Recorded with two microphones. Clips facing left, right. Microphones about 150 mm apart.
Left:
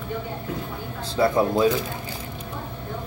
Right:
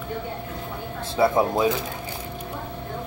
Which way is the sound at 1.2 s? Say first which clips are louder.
Right 1 dB; 15° right (ahead or behind).